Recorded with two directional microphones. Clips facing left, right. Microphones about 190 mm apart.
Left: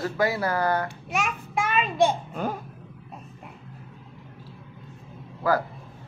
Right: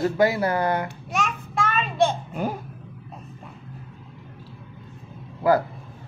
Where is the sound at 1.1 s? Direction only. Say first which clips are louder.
Even; 10° left (ahead or behind).